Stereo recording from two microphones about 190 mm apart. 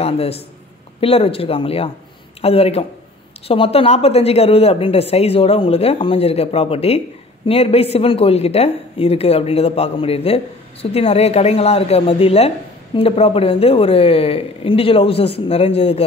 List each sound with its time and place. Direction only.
0.0 s a man's voice: 30° left (ahead or behind)